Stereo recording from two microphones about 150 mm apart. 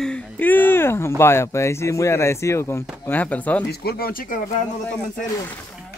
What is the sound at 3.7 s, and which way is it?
Speech, 90° left.